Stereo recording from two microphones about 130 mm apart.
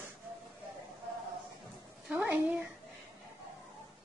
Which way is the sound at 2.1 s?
10° right (ahead or behind).